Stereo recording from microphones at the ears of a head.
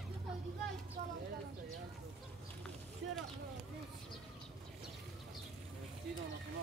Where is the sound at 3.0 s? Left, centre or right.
Right.